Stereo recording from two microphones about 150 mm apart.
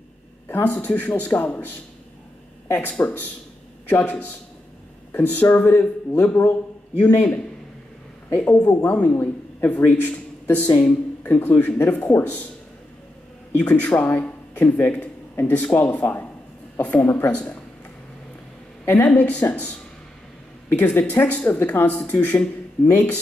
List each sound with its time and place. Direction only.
0.5 s speech: 15° left (ahead or behind)
2.7 s speech: 10° left (ahead or behind)
13.5 s speech: 10° left (ahead or behind)
18.9 s speech: 10° left (ahead or behind)